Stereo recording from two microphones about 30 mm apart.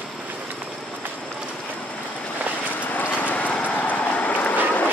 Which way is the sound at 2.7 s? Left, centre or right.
Left.